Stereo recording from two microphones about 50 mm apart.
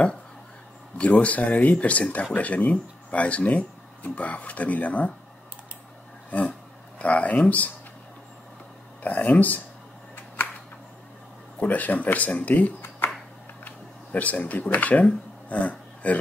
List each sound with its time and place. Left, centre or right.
0.9 s speech: left
6.3 s speech: left
9.0 s speech: left
10.1 s a sound: left
11.6 s speech: left